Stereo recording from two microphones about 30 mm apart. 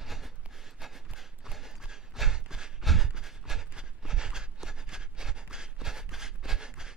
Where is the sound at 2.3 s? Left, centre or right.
Right.